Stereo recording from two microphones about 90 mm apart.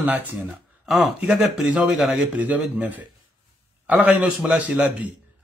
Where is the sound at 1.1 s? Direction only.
5° right (ahead or behind).